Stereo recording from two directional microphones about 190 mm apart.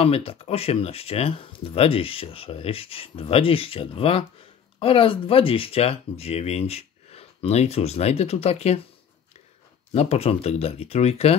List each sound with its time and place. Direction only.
0.0 s speech: 30° left (ahead or behind)
9.9 s speech: 35° left (ahead or behind)